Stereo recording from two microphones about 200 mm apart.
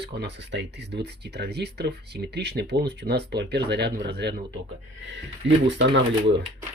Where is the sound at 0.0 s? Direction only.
60° right (ahead or behind).